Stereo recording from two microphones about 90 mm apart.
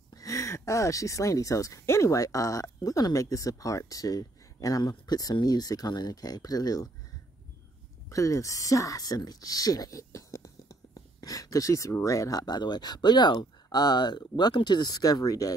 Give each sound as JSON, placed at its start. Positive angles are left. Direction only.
{"t": 0.1, "sound": "speech", "side_deg": 40}
{"t": 8.1, "sound": "speech", "side_deg": 35}